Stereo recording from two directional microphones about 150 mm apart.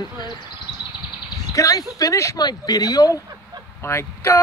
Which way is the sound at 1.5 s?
20° left (ahead or behind).